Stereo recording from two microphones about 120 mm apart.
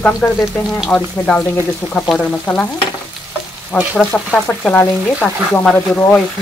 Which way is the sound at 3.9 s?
5° left (ahead or behind).